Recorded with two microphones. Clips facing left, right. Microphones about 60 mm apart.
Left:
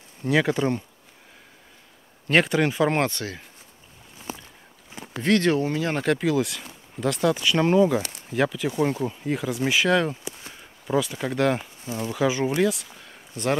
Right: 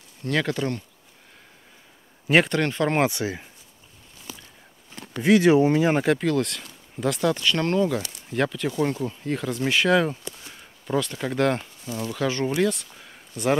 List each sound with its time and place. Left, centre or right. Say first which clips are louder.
0.2 s speech: left 3 dB; centre
2.2 s speech: even; centre
3.0 s speech: right 3 dB; centre
4.3 s a sound: left 6 dB; left
4.9 s a sound: right 1 dB; centre
5.2 s speech: right 4 dB; centre
5.6 s speech: right 6 dB; centre
6.0 s speech: even; centre
11.8 s speech: left 1 dB; left
12.1 s speech: left 2 dB; centre